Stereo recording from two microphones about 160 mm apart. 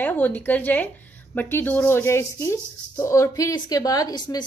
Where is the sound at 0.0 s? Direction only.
10° left (ahead or behind).